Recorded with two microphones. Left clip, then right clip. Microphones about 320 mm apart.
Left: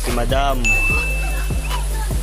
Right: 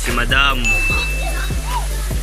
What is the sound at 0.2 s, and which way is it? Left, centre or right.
Speech, centre.